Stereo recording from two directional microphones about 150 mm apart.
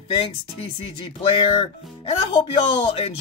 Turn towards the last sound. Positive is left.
turn(degrees=40)  # may be behind; listen again after turning